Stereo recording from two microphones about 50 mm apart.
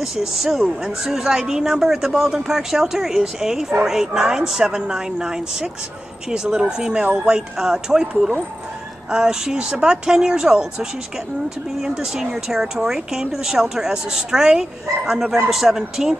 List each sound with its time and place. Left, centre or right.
0.0 s speech: centre